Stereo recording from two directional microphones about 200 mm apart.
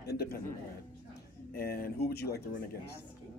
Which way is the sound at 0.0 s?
50° left (ahead or behind).